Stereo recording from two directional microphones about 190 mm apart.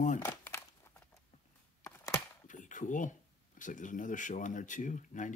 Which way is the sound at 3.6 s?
45° left (ahead or behind).